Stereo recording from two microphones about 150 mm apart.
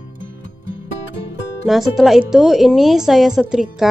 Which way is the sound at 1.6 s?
Centre (ahead or behind).